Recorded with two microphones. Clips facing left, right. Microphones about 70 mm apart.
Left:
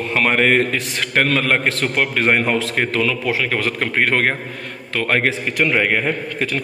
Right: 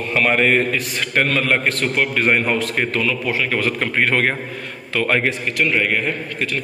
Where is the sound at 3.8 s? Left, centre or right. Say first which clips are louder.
Left 2 dB; left.